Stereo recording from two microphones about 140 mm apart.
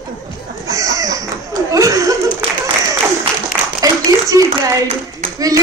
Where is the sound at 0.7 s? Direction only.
25° right (ahead or behind).